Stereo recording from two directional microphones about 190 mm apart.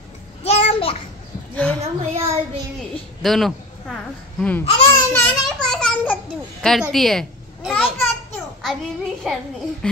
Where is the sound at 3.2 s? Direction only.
Centre (ahead or behind).